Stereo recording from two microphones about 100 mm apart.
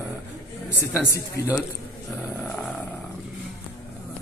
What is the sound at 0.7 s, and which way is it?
Speech, 25° left (ahead or behind).